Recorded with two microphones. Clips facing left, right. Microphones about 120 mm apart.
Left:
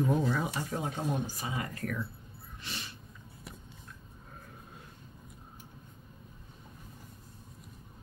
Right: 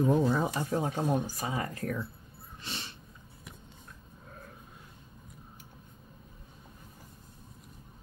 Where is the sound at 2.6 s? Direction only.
30° right (ahead or behind).